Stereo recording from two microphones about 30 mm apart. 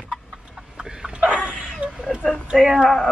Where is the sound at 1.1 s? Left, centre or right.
Right.